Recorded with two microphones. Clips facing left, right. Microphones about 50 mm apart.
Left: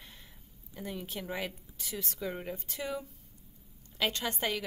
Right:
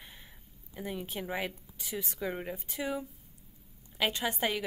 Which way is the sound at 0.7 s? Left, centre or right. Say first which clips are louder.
Right 2 dB; centre.